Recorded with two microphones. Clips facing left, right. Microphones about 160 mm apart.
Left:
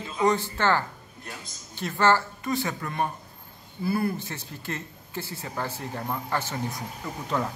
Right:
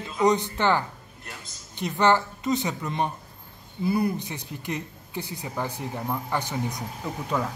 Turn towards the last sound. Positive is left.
turn(degrees=-10)  # may be behind; listen again after turning